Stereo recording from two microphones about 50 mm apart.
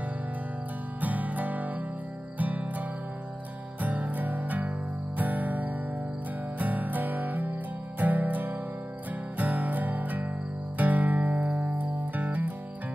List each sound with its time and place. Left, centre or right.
1.0 s music: right
3.8 s music: right